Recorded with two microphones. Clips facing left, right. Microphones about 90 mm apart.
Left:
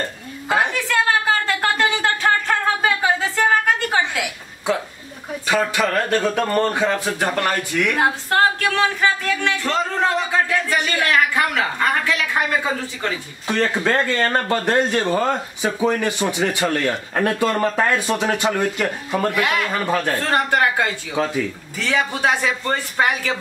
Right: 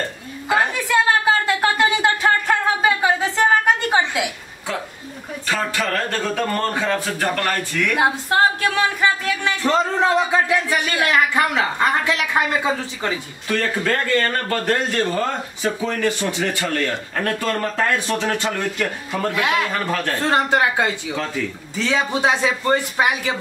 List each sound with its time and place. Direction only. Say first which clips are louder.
0.7 s a sound: right 1 dB; 15° right (ahead or behind)
5.5 s speech: left 3 dB; 10° left (ahead or behind)
7.9 s speech: right 2 dB; 15° right (ahead or behind)
13.5 s speech: left 2 dB; 20° left (ahead or behind)
19.3 s a man's voice: even; 20° right (ahead or behind)
19.7 s speech: left 2 dB; 10° left (ahead or behind)
20.2 s a man's voice: right 4 dB; 20° right (ahead or behind)